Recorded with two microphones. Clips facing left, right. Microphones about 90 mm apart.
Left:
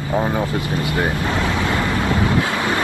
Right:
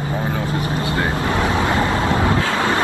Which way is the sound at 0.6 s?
30° right (ahead or behind).